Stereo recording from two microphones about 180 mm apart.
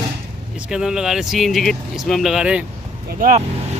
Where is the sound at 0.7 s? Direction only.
5° right (ahead or behind).